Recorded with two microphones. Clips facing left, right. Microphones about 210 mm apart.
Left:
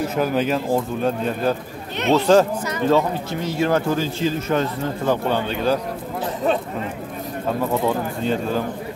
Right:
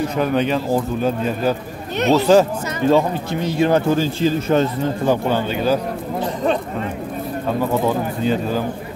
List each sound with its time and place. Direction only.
0.1 s speech: 5° left (ahead or behind)
2.9 s speech: 15° right (ahead or behind)
4.0 s a man's voice: 30° right (ahead or behind)
5.0 s speech: 10° right (ahead or behind)
7.8 s speech: 5° right (ahead or behind)